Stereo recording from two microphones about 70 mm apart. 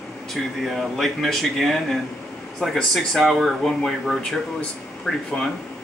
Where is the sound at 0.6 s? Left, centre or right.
Centre.